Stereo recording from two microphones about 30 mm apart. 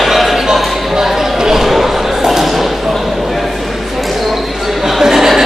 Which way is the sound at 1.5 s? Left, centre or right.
Centre.